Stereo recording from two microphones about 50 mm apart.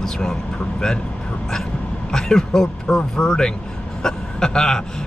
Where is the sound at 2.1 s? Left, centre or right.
Centre.